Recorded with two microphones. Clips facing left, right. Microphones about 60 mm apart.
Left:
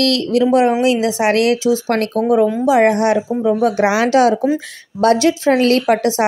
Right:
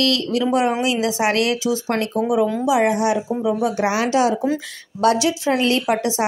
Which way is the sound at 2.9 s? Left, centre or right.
Left.